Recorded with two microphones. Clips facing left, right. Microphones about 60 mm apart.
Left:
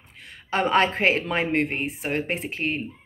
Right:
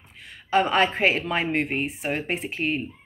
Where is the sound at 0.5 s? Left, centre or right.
Left.